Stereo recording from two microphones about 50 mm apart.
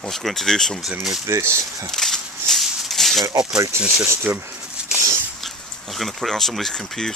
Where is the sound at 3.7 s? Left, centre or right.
Right.